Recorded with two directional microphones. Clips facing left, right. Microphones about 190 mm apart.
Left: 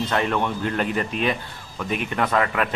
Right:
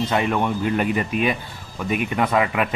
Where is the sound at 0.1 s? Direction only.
10° right (ahead or behind).